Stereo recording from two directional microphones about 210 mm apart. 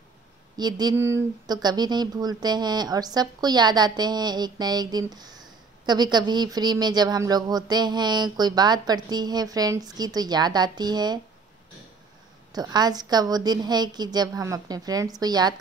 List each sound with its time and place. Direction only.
0.6 s speech: 20° right (ahead or behind)
12.5 s speech: 20° right (ahead or behind)